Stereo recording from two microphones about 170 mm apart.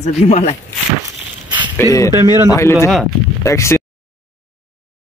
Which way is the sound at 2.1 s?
20° right (ahead or behind).